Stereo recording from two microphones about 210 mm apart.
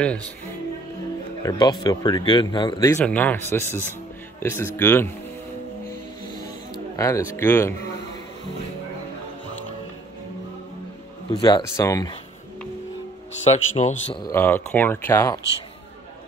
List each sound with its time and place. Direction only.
0.0 s speech: 5° left (ahead or behind)
1.4 s speech: 20° left (ahead or behind)
7.0 s speech: 15° left (ahead or behind)
11.3 s speech: 20° left (ahead or behind)
13.4 s speech: 30° left (ahead or behind)
14.2 s speech: 10° left (ahead or behind)